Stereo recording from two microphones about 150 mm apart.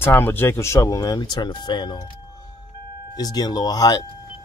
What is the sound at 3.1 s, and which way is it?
Speech, 25° left (ahead or behind).